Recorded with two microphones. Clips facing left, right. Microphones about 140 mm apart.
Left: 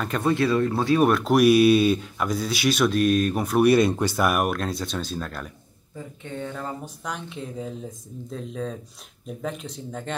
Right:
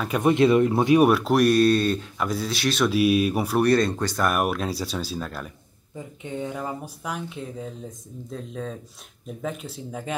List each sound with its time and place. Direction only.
0.2 s speech: 20° right (ahead or behind)
1.0 s speech: 5° right (ahead or behind)
3.6 s speech: 10° left (ahead or behind)
6.2 s speech: 15° right (ahead or behind)